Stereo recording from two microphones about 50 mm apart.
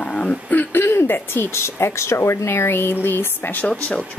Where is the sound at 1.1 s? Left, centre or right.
Left.